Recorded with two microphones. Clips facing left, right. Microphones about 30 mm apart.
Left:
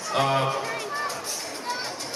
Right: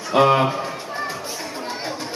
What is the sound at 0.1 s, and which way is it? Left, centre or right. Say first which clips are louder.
Speech: right 8 dB; right.